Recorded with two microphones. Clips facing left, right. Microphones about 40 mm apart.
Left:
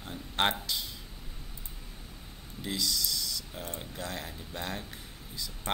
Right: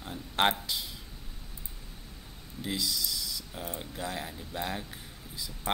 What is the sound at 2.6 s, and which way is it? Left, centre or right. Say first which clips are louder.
Speech: even; centre.